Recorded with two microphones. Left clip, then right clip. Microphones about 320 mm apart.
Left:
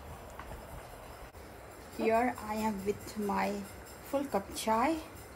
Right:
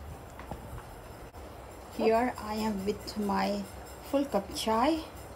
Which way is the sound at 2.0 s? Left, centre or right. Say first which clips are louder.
Right 3 dB; centre.